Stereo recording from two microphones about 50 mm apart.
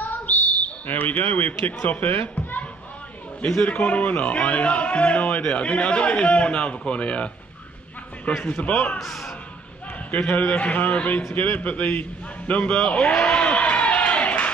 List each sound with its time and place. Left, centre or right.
0.0 s bird: left
1.8 s a child's voice: left
3.4 s speech: left
8.5 s speech: left
9.0 s speech: centre
10.1 s speech: left
13.3 s a sound: left